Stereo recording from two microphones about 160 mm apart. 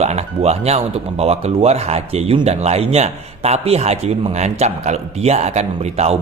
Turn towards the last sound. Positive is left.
turn(degrees=-40)  # may be behind; listen again after turning